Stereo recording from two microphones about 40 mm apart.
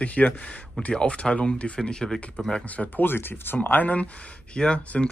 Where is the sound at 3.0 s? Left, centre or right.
Left.